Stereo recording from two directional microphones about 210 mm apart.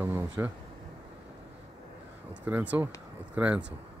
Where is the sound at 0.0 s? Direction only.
10° right (ahead or behind).